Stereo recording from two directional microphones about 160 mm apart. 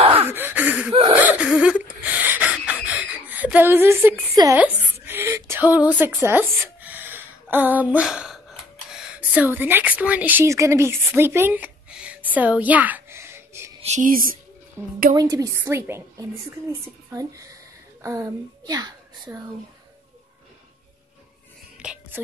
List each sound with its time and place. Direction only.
0.2 s gasp: 10° right (ahead or behind)
1.1 s a sound: 10° right (ahead or behind)
13.8 s speech: 55° right (ahead or behind)
14.8 s a woman's voice: 15° right (ahead or behind)
21.7 s whispering: 5° right (ahead or behind)